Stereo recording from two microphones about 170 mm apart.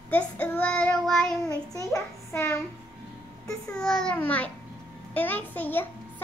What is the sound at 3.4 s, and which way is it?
A child's voice, 5° left (ahead or behind).